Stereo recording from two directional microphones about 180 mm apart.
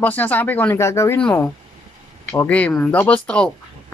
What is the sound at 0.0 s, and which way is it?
Speech, 10° left (ahead or behind).